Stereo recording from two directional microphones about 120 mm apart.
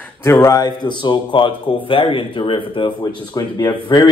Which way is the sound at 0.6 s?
40° left (ahead or behind).